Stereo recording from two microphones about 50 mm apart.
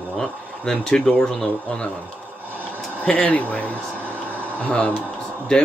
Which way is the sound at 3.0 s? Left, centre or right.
Left.